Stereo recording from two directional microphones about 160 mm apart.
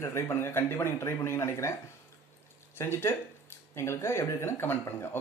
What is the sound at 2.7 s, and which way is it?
Speech, 15° left (ahead or behind).